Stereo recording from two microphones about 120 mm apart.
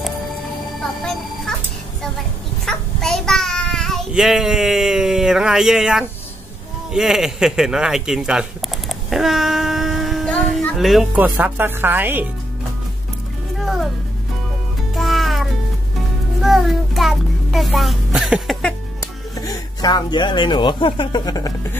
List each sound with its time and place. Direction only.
1.0 s music: centre (ahead or behind)
2.6 s child singing: 5° left (ahead or behind)
4.1 s speech: 5° right (ahead or behind)
11.1 s speech: 15° right (ahead or behind)
15.0 s cat: centre (ahead or behind)
16.3 s child singing: centre (ahead or behind)
19.4 s speech: 35° left (ahead or behind)